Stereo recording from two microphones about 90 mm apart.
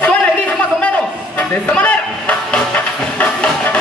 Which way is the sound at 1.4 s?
15° left (ahead or behind).